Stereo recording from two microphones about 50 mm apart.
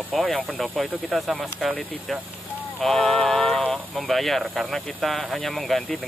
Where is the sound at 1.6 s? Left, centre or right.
Centre.